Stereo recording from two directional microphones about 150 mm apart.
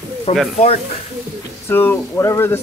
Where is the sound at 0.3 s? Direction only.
45° left (ahead or behind).